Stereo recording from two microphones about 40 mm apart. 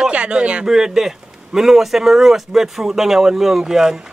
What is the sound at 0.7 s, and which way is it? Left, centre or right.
Speech, centre.